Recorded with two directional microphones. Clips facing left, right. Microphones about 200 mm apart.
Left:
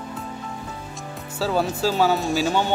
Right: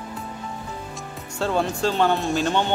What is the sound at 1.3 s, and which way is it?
Speech, 5° left (ahead or behind).